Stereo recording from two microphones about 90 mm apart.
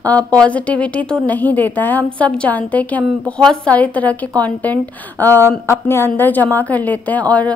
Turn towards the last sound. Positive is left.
turn(degrees=15)  # may be behind; listen again after turning